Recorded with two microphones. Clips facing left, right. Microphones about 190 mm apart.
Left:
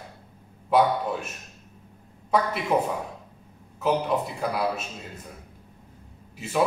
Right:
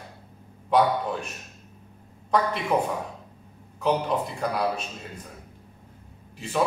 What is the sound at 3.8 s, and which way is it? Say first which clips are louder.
Speech: even; 5° left (ahead or behind).